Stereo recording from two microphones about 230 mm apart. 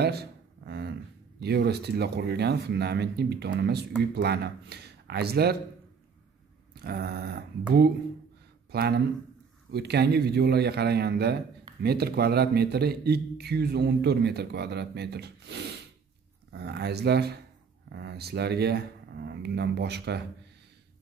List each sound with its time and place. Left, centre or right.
0.0 s a sound: right
1.4 s a man's voice: right
6.7 s mantra: right
8.7 s a man's voice: right